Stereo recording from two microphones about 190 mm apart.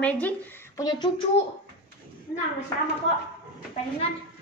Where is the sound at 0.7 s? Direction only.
20° left (ahead or behind).